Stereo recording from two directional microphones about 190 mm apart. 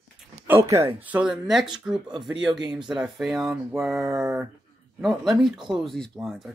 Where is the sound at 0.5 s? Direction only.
15° right (ahead or behind).